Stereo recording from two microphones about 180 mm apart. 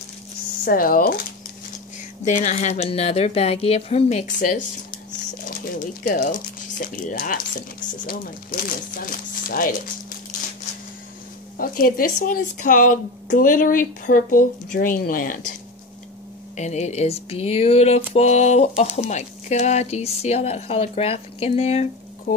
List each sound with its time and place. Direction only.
0.7 s speech: 55° left (ahead or behind)
2.2 s speech: 40° left (ahead or behind)
11.5 s speech: 50° left (ahead or behind)
16.5 s speech: 40° left (ahead or behind)